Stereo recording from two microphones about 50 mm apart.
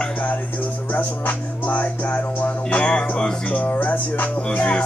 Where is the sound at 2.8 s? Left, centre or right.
Centre.